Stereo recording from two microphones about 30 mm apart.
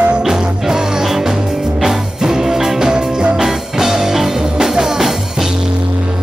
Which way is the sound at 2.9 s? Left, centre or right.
Right.